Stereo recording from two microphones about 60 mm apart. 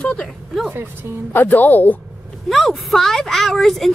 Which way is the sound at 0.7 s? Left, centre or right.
Right.